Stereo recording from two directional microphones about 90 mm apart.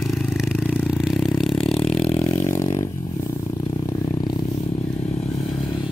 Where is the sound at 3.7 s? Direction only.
45° left (ahead or behind).